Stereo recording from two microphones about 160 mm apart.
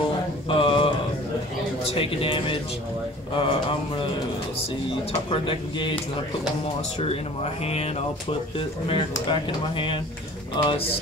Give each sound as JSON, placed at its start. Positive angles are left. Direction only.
{"t": 0.5, "sound": "mantra", "side_deg": 35}
{"t": 1.9, "sound": "speech", "side_deg": 35}
{"t": 5.3, "sound": "speech", "side_deg": 30}
{"t": 7.6, "sound": "speech", "side_deg": 40}